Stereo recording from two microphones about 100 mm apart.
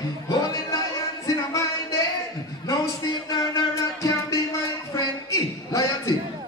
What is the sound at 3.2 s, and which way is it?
Music, 45° left (ahead or behind).